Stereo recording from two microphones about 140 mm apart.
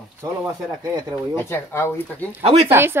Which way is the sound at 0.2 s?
20° right (ahead or behind).